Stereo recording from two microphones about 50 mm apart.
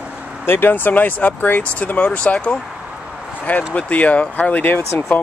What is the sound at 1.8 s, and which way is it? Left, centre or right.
Speech, left.